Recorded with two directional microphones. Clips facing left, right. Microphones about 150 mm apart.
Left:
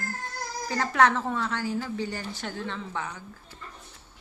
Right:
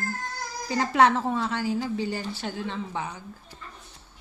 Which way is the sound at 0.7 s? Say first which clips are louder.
Right 2 dB; 15° right (ahead or behind).